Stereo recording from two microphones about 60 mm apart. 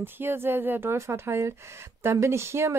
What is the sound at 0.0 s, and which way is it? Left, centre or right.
Speech, right.